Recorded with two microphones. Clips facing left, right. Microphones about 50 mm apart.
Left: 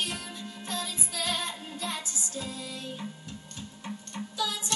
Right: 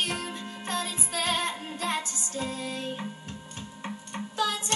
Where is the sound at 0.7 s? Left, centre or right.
Right.